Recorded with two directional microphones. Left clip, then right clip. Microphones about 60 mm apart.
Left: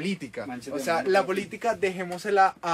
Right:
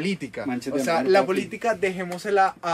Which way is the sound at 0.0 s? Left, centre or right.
Centre.